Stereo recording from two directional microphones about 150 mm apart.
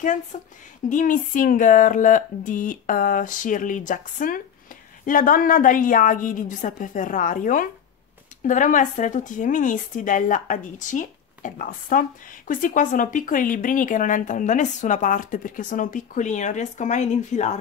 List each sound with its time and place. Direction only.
0.3 s speech: 60° left (ahead or behind)